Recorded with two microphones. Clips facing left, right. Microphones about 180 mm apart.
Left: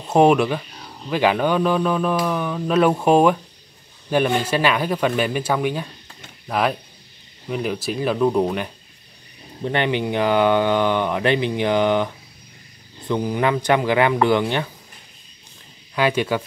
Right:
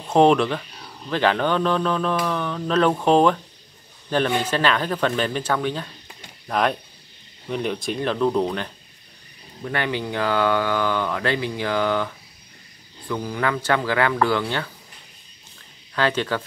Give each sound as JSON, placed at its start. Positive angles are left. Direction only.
{"t": 0.0, "sound": "speech", "side_deg": 10}
{"t": 9.6, "sound": "speech", "side_deg": 20}
{"t": 13.1, "sound": "speech", "side_deg": 20}
{"t": 15.9, "sound": "speech", "side_deg": 10}